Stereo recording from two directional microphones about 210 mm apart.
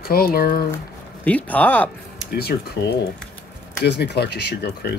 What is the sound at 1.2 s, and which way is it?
Speech, 5° left (ahead or behind).